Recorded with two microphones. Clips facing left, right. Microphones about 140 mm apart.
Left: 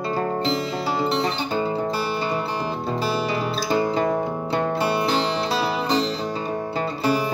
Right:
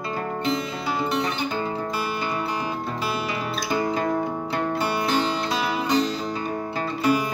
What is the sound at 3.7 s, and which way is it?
Music, 30° left (ahead or behind).